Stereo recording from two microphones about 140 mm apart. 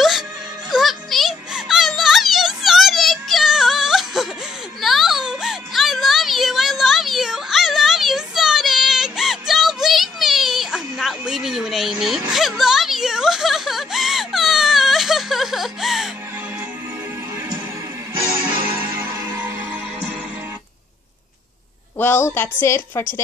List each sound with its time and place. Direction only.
0.7 s music: centre (ahead or behind)
12.3 s whimper: centre (ahead or behind)
18.2 s music: 35° right (ahead or behind)
21.9 s a sound: 15° left (ahead or behind)